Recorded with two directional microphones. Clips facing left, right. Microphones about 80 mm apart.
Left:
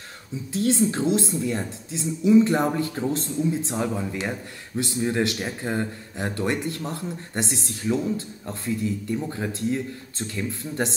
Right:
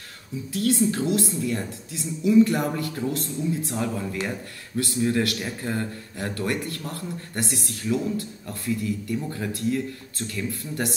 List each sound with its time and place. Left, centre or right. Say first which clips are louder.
0.5 s speech: left 1 dB; left